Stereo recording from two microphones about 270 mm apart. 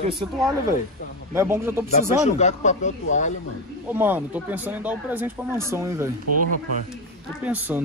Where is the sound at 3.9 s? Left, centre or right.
Centre.